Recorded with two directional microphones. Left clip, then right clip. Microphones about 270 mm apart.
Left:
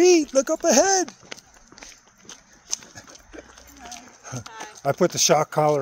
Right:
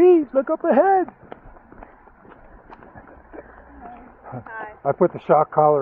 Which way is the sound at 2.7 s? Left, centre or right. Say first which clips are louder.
Left 12 dB; centre.